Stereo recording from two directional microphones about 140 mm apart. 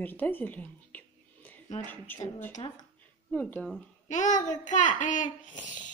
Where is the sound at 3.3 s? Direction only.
10° left (ahead or behind).